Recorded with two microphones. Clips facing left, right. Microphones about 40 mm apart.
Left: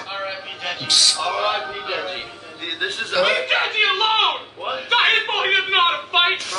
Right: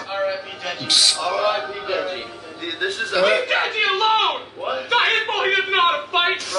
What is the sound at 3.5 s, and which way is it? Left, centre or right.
Speech, left.